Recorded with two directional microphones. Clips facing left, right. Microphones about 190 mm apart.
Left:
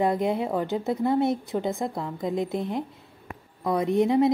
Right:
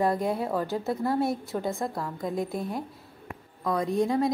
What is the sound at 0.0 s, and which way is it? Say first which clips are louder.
A woman's voice: left 2 dB; 20° left (ahead or behind).